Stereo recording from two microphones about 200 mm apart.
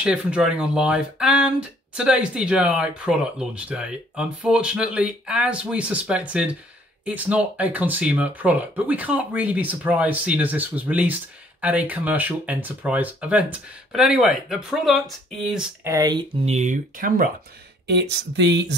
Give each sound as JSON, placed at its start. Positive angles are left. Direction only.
{"t": 0.0, "sound": "speech", "side_deg": -5}
{"t": 15.9, "sound": "speech", "side_deg": -20}
{"t": 16.4, "sound": "speech", "side_deg": -35}
{"t": 17.8, "sound": "speech", "side_deg": -55}